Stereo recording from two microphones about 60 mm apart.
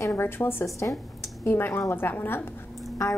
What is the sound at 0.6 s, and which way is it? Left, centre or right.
Speech, left.